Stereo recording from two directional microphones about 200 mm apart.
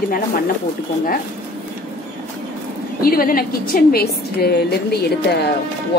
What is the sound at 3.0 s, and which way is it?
A woman's voice, 45° left (ahead or behind).